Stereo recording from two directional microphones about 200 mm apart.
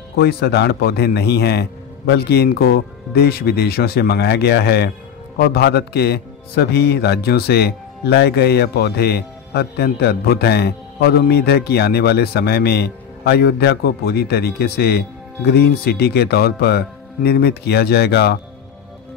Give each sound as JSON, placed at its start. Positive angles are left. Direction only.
{"t": 0.2, "sound": "speech", "side_deg": 50}